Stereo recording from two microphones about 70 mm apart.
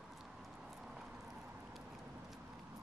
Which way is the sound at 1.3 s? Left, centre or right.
Right.